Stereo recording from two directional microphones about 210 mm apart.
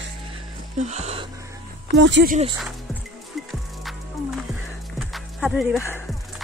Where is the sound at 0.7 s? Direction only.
30° right (ahead or behind).